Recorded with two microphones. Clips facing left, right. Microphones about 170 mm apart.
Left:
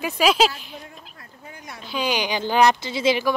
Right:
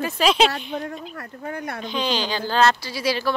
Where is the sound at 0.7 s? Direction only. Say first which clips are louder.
Right 11 dB; 75° right (ahead or behind).